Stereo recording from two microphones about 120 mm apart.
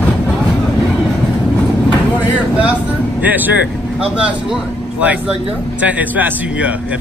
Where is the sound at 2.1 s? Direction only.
10° right (ahead or behind).